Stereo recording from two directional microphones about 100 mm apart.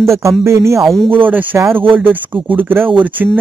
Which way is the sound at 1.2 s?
20° right (ahead or behind).